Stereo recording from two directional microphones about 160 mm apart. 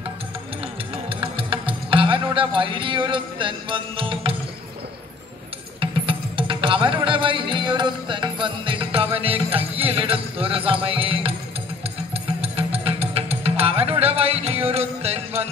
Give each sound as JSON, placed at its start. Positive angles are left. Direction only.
{"t": 1.0, "sound": "music", "side_deg": -35}
{"t": 5.8, "sound": "music", "side_deg": -35}